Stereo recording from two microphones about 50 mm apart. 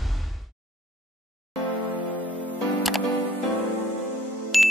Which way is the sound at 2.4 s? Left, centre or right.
Left.